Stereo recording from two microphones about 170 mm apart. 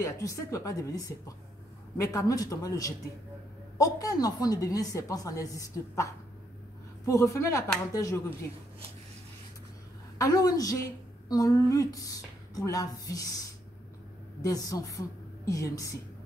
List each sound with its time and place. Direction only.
0.0 s a woman's voice: 20° left (ahead or behind)
10.1 s a woman's voice: 20° left (ahead or behind)
14.4 s a woman's voice: 20° left (ahead or behind)